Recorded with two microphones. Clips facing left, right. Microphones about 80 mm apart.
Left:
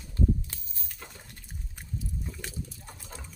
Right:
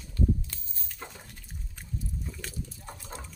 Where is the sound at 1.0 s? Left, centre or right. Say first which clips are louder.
Right 4 dB; right.